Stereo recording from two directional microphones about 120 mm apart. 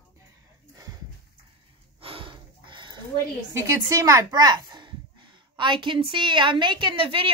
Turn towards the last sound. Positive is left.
turn(degrees=-45)  # may be behind; listen again after turning